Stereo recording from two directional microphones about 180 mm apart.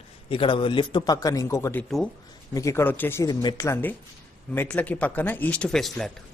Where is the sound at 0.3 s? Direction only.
30° left (ahead or behind).